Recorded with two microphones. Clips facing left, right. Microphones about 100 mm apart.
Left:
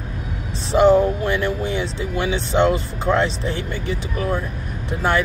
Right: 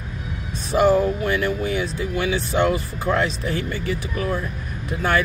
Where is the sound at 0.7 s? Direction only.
25° left (ahead or behind).